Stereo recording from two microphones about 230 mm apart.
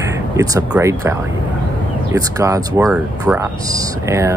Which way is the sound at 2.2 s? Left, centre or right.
Centre.